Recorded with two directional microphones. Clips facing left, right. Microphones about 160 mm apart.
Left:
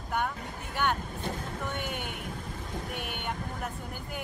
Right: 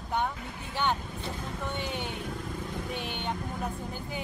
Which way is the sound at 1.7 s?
55° left (ahead or behind).